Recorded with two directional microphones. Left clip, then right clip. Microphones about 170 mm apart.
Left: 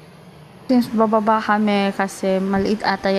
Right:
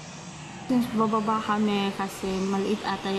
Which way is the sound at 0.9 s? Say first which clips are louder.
Left 9 dB; 45° left (ahead or behind).